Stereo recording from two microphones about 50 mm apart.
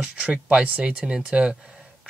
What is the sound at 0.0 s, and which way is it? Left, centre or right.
Speech, right.